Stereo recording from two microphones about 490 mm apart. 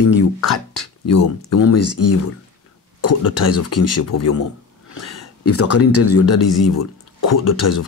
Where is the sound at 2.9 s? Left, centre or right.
Left.